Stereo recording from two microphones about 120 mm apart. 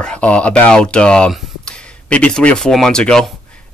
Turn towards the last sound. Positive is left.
turn(degrees=5)  # may be behind; listen again after turning